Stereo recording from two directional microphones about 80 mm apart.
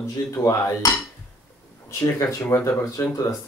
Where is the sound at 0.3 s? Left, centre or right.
Left.